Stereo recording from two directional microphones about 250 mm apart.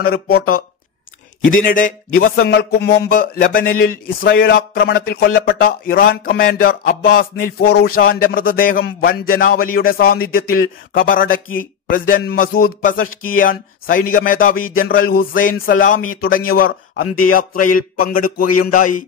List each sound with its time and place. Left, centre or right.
0.3 s speech: left